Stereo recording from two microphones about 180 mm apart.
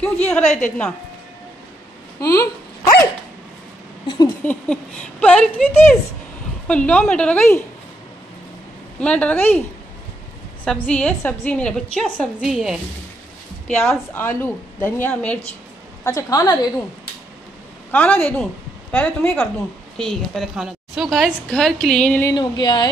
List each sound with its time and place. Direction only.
0.0 s a woman's voice: 5° left (ahead or behind)
0.4 s a woman's voice: 40° left (ahead or behind)
2.1 s speech: 20° left (ahead or behind)
4.1 s a woman's voice: 20° left (ahead or behind)
4.5 s a woman's voice: 5° left (ahead or behind)
9.0 s a woman's voice: 5° left (ahead or behind)
10.6 s a woman's voice: 5° left (ahead or behind)
13.7 s a woman's voice: 10° left (ahead or behind)
17.9 s a woman's voice: 10° left (ahead or behind)
22.3 s a woman's voice: 25° left (ahead or behind)